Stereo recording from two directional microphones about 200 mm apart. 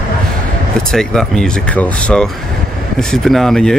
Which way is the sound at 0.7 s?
5° left (ahead or behind).